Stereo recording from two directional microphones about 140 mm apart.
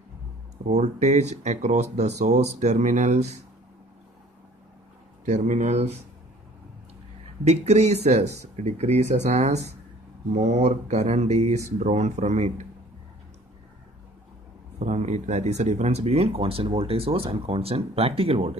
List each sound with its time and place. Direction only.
0.7 s speech: 55° right (ahead or behind)
5.2 s speech: 55° right (ahead or behind)
7.4 s speech: 50° right (ahead or behind)
14.8 s speech: 55° right (ahead or behind)